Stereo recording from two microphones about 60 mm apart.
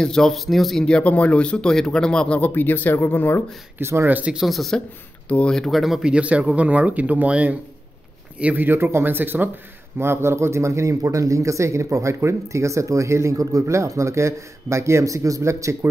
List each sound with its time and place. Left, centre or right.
0.0 s speech: centre
0.8 s speech: left
2.5 s speech: left
3.8 s speech: right
4.5 s speech: centre
5.8 s speech: centre
6.0 s speech: centre
8.6 s speech: right
9.9 s speech: right